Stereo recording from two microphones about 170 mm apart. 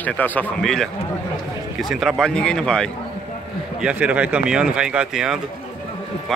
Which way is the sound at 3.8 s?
10° right (ahead or behind).